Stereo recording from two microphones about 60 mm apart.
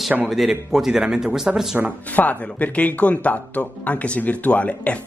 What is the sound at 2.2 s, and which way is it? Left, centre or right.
Speech, left.